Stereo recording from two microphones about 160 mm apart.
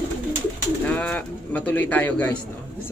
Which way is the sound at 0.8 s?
10° left (ahead or behind).